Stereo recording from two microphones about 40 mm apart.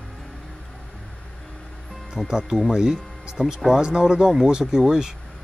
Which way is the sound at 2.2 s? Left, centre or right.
Centre.